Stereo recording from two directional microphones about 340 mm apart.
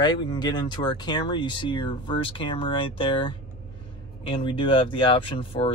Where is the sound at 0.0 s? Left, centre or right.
Centre.